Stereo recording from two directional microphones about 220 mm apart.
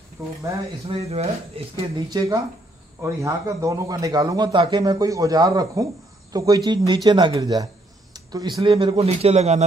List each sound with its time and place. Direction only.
0.2 s a man's voice: 15° right (ahead or behind)
0.8 s a man's voice: 30° right (ahead or behind)